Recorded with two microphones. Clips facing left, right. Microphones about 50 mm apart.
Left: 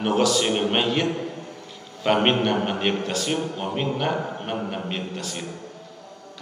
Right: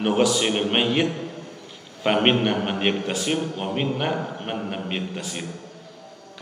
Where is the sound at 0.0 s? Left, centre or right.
Centre.